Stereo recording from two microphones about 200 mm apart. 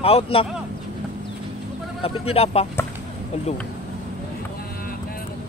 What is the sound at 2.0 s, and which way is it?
Speech, 30° left (ahead or behind).